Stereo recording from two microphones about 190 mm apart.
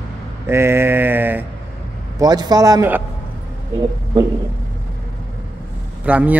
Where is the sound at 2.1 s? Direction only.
20° right (ahead or behind).